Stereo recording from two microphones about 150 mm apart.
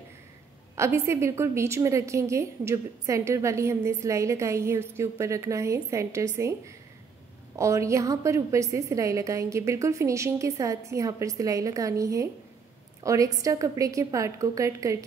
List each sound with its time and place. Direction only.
0.7 s a woman's voice: 20° right (ahead or behind)